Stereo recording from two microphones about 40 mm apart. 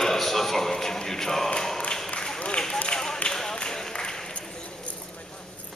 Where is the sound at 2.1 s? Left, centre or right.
Left.